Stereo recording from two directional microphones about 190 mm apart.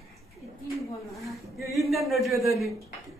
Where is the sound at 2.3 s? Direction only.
15° right (ahead or behind).